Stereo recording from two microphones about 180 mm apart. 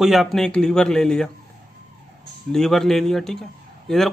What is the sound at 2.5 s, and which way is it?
Speech, centre (ahead or behind).